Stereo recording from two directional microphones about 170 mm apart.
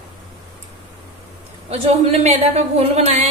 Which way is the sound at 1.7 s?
35° right (ahead or behind).